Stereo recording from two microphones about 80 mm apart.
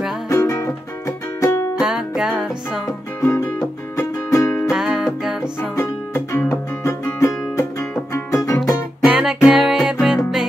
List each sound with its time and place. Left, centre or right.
0.3 s music: left
1.8 s music: centre
3.2 s music: left
4.6 s music: centre
5.4 s music: left
9.0 s music: centre